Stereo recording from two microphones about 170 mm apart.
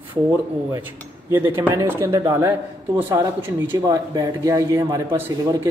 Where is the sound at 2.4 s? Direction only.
15° right (ahead or behind).